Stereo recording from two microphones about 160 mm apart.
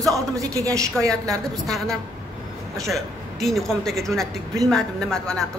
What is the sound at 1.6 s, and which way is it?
Speech, centre (ahead or behind).